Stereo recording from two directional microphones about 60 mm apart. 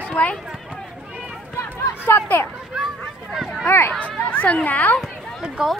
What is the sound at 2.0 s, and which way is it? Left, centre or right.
Speech, left.